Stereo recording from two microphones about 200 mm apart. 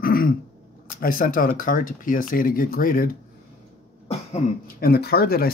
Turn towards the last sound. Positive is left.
turn(degrees=50)  # may be behind; listen again after turning